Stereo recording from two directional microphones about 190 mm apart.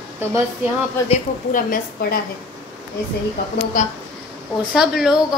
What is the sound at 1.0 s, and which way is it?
A woman's voice, 40° left (ahead or behind).